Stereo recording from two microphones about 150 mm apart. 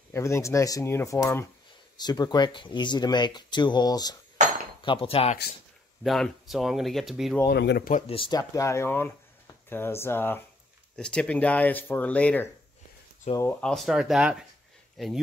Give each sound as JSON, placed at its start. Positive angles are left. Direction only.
{"t": 0.1, "sound": "speech", "side_deg": 20}
{"t": 4.8, "sound": "speech", "side_deg": 40}
{"t": 6.0, "sound": "speech", "side_deg": 0}
{"t": 7.4, "sound": "speech", "side_deg": 90}
{"t": 8.1, "sound": "speech", "side_deg": 30}